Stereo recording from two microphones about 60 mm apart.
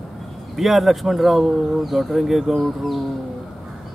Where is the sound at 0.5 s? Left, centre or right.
Centre.